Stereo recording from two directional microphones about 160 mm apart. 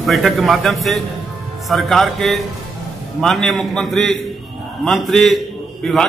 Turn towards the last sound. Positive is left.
turn(degrees=0)  # may be behind; listen again after turning